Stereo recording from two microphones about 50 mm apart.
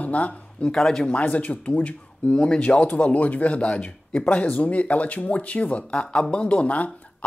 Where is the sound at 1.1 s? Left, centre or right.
Left.